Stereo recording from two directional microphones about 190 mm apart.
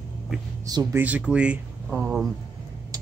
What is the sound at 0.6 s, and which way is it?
Speech, 20° right (ahead or behind).